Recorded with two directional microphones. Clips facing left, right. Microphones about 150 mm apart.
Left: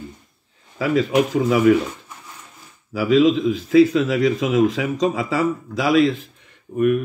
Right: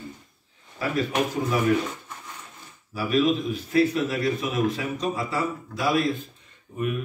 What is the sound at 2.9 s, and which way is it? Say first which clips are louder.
A man's voice: left 7 dB; 90° left.